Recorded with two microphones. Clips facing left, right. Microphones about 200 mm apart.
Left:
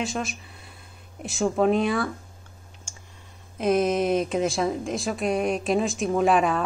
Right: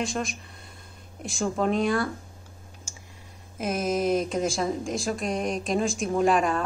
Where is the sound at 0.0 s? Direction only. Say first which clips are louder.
Even; 5° left (ahead or behind).